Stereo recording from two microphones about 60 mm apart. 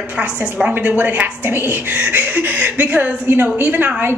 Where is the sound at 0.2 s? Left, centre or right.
Centre.